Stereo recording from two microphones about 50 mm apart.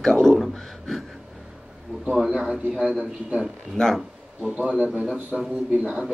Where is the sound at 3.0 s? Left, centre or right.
Right.